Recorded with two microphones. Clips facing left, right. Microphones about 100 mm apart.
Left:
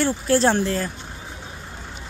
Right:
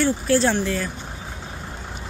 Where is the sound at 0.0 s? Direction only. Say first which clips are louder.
Even; 30° left (ahead or behind).